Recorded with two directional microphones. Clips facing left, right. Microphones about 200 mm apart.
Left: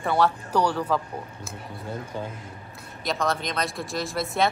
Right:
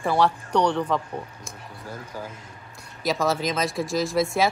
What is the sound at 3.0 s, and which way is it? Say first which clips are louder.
Speech: right 3 dB; centre (ahead or behind).